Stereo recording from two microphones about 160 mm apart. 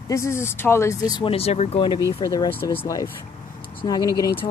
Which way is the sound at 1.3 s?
40° left (ahead or behind).